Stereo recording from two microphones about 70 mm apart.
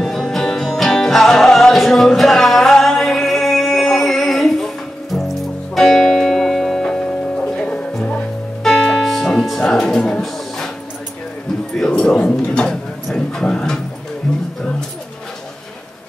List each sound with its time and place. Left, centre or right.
0.0 s music: centre
8.6 s music: centre
11.7 s a sound: centre